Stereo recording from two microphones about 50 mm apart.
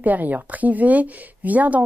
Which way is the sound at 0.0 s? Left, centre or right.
Right.